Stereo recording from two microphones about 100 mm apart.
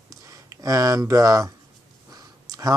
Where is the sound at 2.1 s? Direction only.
40° right (ahead or behind).